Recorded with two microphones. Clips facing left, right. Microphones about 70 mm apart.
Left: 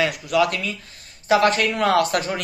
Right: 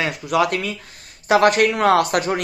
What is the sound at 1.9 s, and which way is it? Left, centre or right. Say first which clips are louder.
Speech: right 2 dB; right.